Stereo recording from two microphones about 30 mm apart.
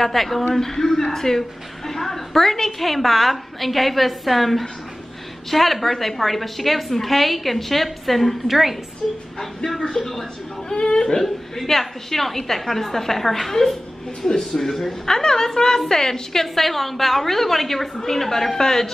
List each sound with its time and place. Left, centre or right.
0.0 s a woman's voice: centre
8.5 s a woman's voice: centre
9.0 s a woman's voice: centre
15.0 s a woman's voice: centre